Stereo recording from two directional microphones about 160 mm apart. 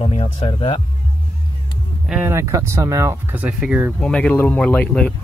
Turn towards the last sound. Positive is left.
turn(degrees=5)  # may be behind; listen again after turning